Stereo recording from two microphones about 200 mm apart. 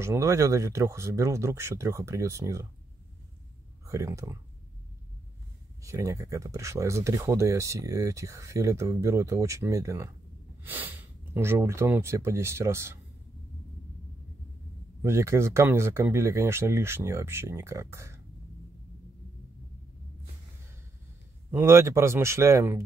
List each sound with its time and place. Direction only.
0.0 s speech: 15° right (ahead or behind)
3.8 s speech: 15° right (ahead or behind)
5.8 s speech: 15° right (ahead or behind)
15.0 s speech: 15° right (ahead or behind)
21.5 s speech: 10° right (ahead or behind)